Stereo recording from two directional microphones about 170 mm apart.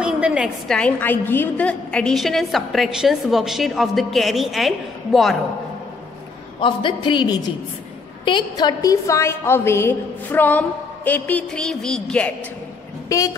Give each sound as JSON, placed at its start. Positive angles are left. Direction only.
{"t": 0.0, "sound": "a woman's voice", "side_deg": -5}
{"t": 6.6, "sound": "a man's voice", "side_deg": 30}
{"t": 13.1, "sound": "a man's voice", "side_deg": 20}